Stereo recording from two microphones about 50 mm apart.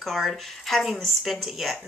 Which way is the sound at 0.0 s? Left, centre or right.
Centre.